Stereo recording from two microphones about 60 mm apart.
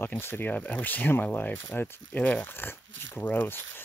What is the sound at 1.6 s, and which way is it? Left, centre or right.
Speech, left.